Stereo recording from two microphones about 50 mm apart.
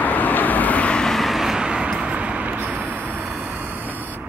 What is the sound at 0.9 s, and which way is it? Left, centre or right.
Vehicle, centre.